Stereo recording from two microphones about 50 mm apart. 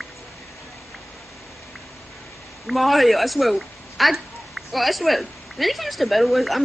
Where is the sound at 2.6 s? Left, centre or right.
Centre.